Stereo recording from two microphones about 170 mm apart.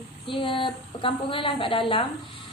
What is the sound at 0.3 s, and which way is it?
A woman's voice, 30° left (ahead or behind).